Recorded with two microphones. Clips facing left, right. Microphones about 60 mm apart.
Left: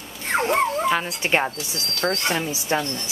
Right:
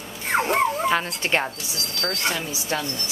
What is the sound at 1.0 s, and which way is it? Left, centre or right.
Speech, centre.